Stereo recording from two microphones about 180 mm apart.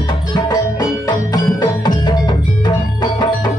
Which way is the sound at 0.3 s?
20° left (ahead or behind).